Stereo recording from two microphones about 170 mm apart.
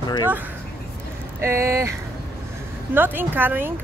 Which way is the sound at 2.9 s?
10° right (ahead or behind).